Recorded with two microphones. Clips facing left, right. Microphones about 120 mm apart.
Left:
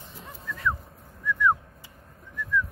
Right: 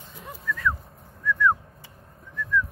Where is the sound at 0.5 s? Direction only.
30° left (ahead or behind).